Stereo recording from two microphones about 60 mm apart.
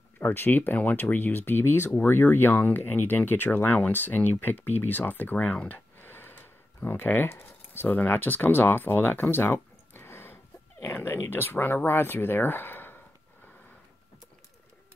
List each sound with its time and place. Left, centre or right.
0.2 s speech: left
5.5 s speech: centre
5.9 s a sound: left
11.1 s speech: left